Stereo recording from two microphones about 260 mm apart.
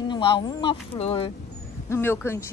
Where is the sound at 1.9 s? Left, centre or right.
Centre.